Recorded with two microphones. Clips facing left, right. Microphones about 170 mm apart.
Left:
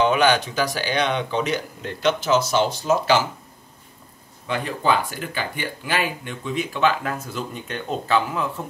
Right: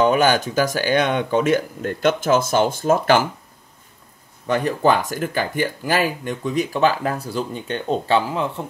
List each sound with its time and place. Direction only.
0.0 s speech: 45° right (ahead or behind)
4.5 s speech: 45° right (ahead or behind)